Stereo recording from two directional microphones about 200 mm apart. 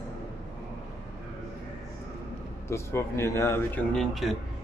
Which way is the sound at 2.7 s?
15° left (ahead or behind).